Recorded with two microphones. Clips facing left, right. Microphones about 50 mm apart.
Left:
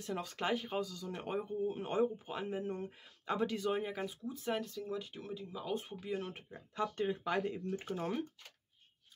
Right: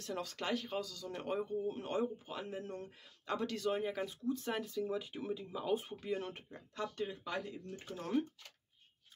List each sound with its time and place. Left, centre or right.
0.0 s speech: centre
7.0 s speech: left